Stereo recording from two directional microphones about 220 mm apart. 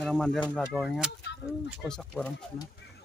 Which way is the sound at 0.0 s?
Centre (ahead or behind).